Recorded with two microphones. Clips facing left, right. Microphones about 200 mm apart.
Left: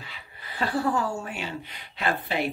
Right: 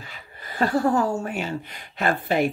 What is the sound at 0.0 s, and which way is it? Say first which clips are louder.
Speech: right 3 dB; 45° right (ahead or behind).